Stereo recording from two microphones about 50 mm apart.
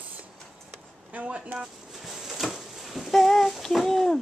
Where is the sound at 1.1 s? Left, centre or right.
Right.